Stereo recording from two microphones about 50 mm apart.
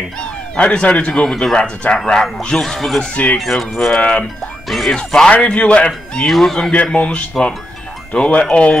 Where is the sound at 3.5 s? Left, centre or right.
Centre.